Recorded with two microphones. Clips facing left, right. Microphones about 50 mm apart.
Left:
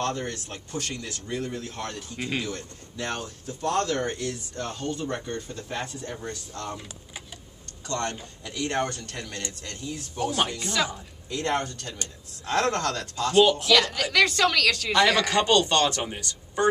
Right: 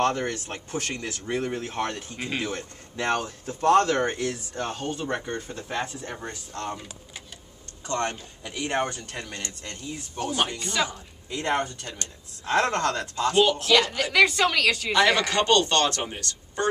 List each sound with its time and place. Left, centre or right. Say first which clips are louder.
0.0 s speech: right 5 dB; right
2.1 s a woman's voice: left 5 dB; centre
2.4 s speech: right 3 dB; right; by 6.1 s centre
6.1 s speech: even; right
7.8 s a woman's voice: right 2 dB; right
10.1 s a woman's voice: left 1 dB; centre
13.4 s speech: left 2 dB; centre
13.7 s a woman's voice: right 2 dB; centre
15.3 s speech: even; centre